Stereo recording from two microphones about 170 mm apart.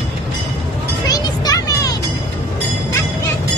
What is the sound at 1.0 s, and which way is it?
Music, 20° left (ahead or behind).